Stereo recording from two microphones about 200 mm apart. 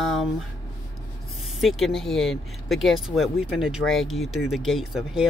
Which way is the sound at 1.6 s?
Centre (ahead or behind).